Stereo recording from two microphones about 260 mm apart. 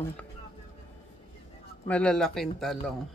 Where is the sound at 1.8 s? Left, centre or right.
Centre.